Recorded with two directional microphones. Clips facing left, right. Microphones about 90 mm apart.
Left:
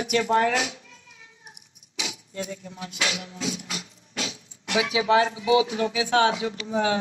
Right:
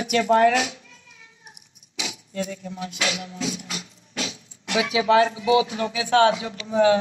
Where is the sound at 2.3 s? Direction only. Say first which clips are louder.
Right 4 dB; 15° left (ahead or behind).